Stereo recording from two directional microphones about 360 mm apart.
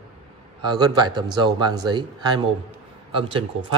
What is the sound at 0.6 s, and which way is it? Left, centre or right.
A man's voice, centre.